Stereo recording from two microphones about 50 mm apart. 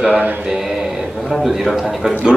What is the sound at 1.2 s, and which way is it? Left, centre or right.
A man's voice, centre.